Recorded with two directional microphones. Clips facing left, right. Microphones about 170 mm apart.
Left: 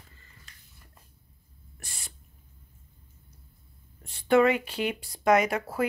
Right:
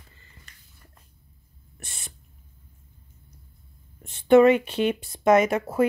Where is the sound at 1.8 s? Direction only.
25° right (ahead or behind).